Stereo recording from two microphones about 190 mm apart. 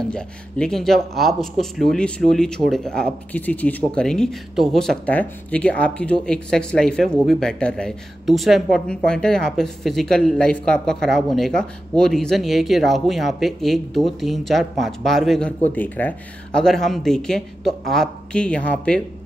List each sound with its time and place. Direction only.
0.1 s speech: 5° left (ahead or behind)